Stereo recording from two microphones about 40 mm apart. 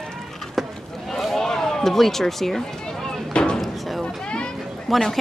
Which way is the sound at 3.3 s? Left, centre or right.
Left.